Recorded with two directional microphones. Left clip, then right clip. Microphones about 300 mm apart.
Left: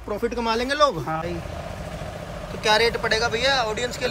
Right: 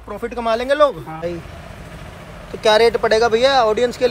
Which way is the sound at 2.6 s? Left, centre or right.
Centre.